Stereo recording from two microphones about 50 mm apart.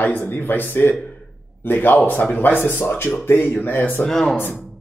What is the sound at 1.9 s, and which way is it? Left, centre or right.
Speech, left.